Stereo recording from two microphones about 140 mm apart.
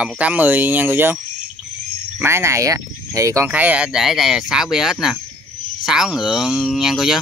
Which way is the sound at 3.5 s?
10° right (ahead or behind).